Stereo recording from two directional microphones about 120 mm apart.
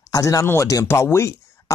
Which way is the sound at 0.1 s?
25° left (ahead or behind).